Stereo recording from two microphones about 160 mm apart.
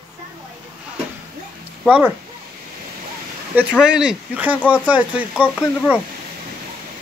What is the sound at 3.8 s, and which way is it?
Speech, 5° right (ahead or behind).